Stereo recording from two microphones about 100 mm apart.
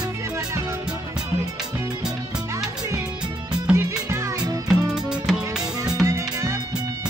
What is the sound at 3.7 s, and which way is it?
Music, 30° right (ahead or behind).